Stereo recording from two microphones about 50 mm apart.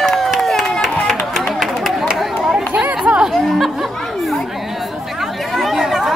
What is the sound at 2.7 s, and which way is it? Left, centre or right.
Chatter, right.